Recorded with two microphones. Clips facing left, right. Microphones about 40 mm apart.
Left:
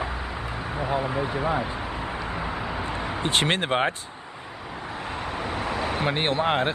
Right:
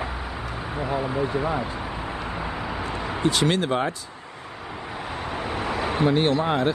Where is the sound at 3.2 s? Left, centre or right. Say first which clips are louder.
Right 2 dB; left.